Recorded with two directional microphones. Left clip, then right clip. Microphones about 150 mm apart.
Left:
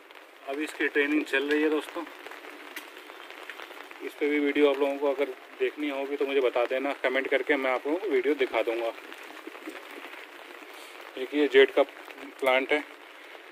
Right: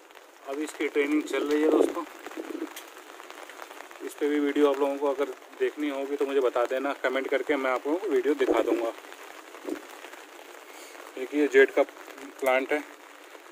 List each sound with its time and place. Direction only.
0.5 s speech: 5° left (ahead or behind)
4.2 s speech: 5° left (ahead or behind)
11.1 s speech: 5° right (ahead or behind)